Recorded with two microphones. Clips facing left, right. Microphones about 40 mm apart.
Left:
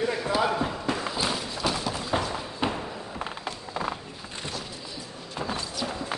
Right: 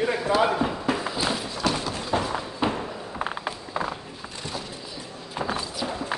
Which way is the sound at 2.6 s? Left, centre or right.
Centre.